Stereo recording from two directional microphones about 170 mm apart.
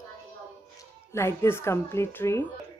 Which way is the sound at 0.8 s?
15° left (ahead or behind).